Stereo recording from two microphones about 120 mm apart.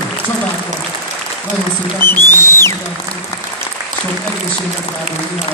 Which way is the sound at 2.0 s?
20° left (ahead or behind).